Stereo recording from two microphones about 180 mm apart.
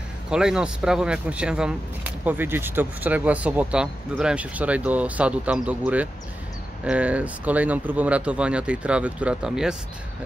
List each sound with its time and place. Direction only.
0.3 s speech: 5° right (ahead or behind)